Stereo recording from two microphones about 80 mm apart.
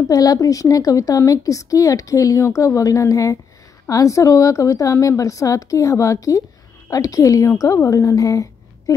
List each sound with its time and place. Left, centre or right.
0.1 s a woman's voice: left